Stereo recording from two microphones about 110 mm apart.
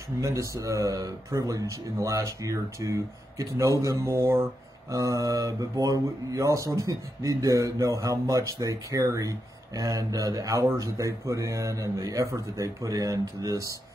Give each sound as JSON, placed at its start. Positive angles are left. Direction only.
{"t": 0.2, "sound": "speech", "side_deg": -30}